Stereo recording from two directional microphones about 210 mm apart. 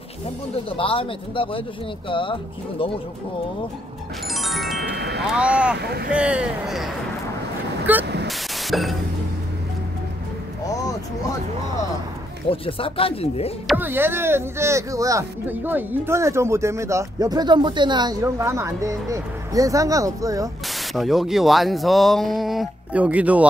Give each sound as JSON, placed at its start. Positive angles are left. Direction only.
{"t": 0.7, "sound": "speech", "side_deg": 25}
{"t": 4.3, "sound": "music", "side_deg": 0}
{"t": 4.7, "sound": "chime", "side_deg": -50}
{"t": 5.2, "sound": "speech", "side_deg": -5}
{"t": 5.8, "sound": "speech", "side_deg": -50}
{"t": 6.1, "sound": "speech", "side_deg": -5}
{"t": 7.9, "sound": "speech", "side_deg": -10}
{"t": 8.3, "sound": "static", "side_deg": 0}
{"t": 10.7, "sound": "a sound", "side_deg": 15}
{"t": 12.4, "sound": "speech", "side_deg": 25}
{"t": 13.7, "sound": "speech", "side_deg": -10}
{"t": 20.9, "sound": "speech", "side_deg": 0}